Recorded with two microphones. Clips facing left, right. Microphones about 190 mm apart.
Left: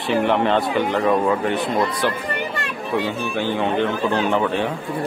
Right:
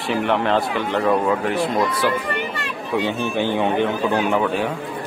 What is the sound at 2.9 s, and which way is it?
A man's voice, 15° right (ahead or behind).